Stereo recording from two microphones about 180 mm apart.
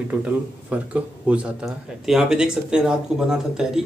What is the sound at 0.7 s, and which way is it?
A man's voice, 5° right (ahead or behind).